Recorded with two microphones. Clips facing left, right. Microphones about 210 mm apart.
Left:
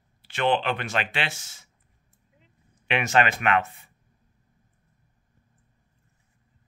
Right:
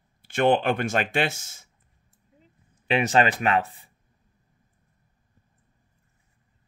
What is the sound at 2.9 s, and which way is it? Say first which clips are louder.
Speech: right 2 dB; 35° right (ahead or behind).